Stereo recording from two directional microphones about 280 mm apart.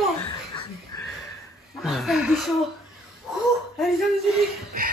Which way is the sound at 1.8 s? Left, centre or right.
Centre.